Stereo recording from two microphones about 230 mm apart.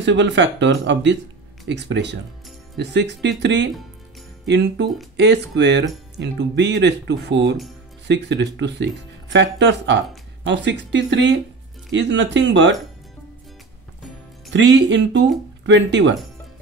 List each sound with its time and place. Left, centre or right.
0.0 s speech: right
14.5 s speech: right